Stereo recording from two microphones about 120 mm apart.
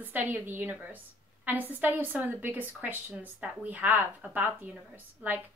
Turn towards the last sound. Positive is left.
turn(degrees=-15)  # may be behind; listen again after turning